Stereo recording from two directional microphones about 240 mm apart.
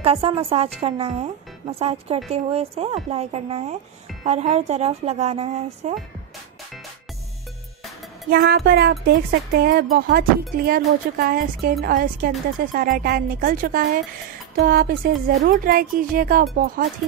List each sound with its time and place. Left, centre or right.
0.0 s a woman's voice: right
8.3 s speech: right